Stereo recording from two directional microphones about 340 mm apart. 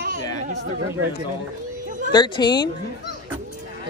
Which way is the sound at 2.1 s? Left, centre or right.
Centre.